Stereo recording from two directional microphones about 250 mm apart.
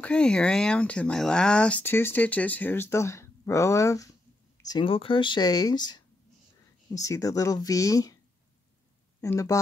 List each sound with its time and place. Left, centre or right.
0.0 s speech: centre
9.2 s speech: centre